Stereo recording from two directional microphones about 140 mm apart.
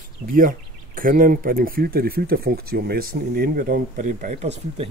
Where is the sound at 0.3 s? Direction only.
85° right.